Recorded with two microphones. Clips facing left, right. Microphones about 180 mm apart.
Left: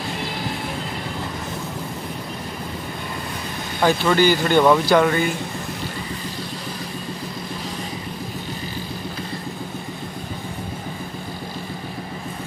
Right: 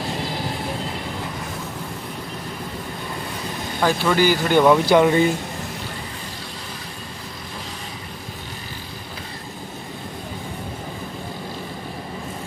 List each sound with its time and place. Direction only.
3.8 s speech: 5° right (ahead or behind)
4.8 s speech: 20° right (ahead or behind)